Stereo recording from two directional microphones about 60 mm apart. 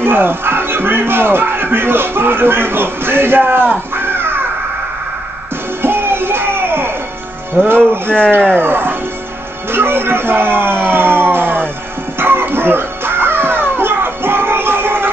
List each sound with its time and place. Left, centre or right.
0.0 s speech: right
5.8 s music: right
7.6 s music: centre
8.5 s speech: right
10.9 s music: right